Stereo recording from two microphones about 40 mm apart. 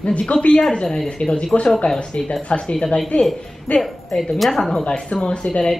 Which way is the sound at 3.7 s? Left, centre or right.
Left.